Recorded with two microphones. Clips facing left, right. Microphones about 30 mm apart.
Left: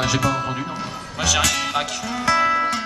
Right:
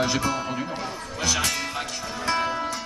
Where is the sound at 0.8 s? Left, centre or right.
Left.